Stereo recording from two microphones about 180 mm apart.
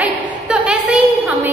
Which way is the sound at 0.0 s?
5° right (ahead or behind).